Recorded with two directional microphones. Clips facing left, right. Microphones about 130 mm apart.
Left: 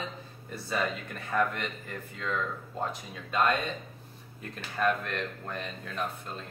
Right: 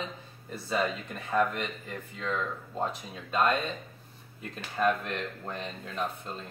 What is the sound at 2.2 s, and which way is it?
Speech, 20° right (ahead or behind).